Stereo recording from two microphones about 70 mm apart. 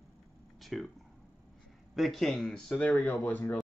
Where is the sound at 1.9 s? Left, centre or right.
Centre; by 3.6 s left.